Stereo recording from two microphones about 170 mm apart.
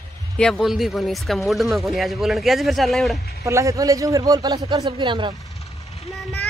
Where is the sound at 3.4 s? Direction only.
20° right (ahead or behind).